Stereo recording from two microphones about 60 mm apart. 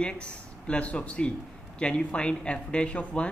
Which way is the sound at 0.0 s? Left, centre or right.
Centre.